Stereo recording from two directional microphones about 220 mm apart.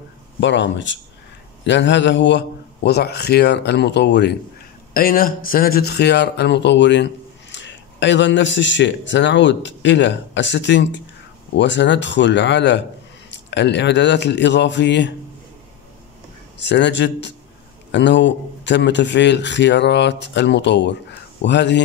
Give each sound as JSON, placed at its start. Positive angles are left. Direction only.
{"t": 0.4, "sound": "a man's voice", "side_deg": 55}
{"t": 4.9, "sound": "a man's voice", "side_deg": 40}
{"t": 16.5, "sound": "a man's voice", "side_deg": 55}